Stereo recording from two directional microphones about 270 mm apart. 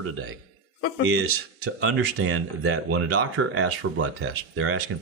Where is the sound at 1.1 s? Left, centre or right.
Right.